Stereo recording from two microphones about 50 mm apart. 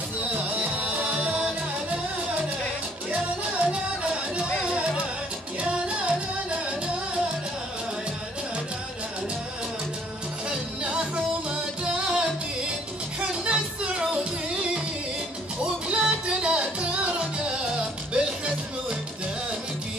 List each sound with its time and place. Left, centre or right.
0.3 s music: right
5.6 s music: right
10.8 s music: right
13.5 s music: right
15.9 s music: right